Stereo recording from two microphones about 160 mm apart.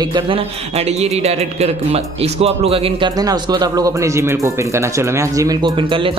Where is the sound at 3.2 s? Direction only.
25° right (ahead or behind).